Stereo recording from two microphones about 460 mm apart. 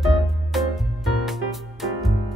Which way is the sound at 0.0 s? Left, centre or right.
Centre.